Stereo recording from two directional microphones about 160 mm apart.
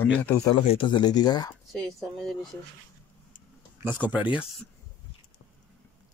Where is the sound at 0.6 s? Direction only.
35° left (ahead or behind).